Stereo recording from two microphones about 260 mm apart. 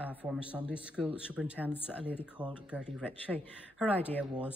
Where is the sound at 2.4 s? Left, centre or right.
Centre.